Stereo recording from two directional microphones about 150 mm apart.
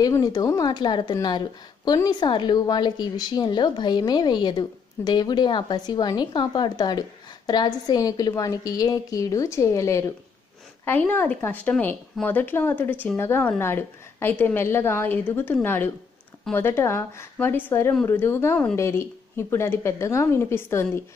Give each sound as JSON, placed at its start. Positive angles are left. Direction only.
{"t": 0.0, "sound": "a woman's voice", "side_deg": 25}